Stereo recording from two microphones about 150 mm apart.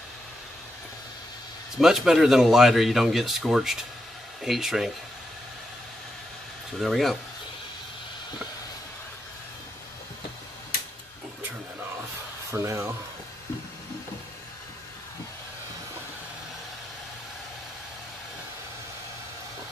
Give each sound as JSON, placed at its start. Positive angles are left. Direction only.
{"t": 1.8, "sound": "speech", "side_deg": -5}
{"t": 6.8, "sound": "speech", "side_deg": 0}
{"t": 12.4, "sound": "speech", "side_deg": -20}